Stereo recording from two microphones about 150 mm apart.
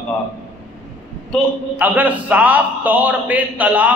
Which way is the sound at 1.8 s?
10° right (ahead or behind).